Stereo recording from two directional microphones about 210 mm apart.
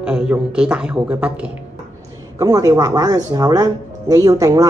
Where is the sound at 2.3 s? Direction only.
15° right (ahead or behind).